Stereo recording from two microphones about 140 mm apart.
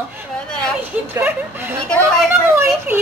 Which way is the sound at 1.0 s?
15° right (ahead or behind).